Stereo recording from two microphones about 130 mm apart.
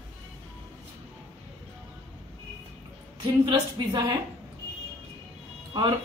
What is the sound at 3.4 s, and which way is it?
Speech, 30° right (ahead or behind).